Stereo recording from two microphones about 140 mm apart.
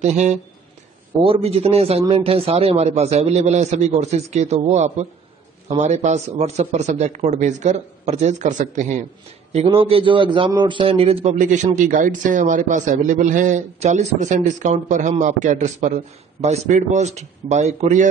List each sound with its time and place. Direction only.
0.0 s a man's voice: 55° right (ahead or behind)
1.2 s a man's voice: 45° right (ahead or behind); by 9.0 s 60° right (ahead or behind)
9.5 s a man's voice: 45° right (ahead or behind)
11.3 s a man's voice: 65° right (ahead or behind)